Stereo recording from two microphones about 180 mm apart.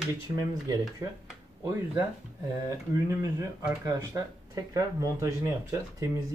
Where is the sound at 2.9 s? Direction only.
15° right (ahead or behind).